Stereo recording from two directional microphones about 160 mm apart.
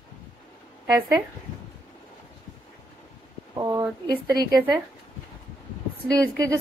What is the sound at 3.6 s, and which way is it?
Speech, 20° right (ahead or behind).